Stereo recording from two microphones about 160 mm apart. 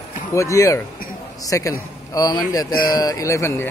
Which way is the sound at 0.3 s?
20° left (ahead or behind).